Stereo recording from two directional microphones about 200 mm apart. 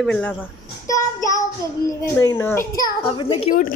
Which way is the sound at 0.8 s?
15° left (ahead or behind).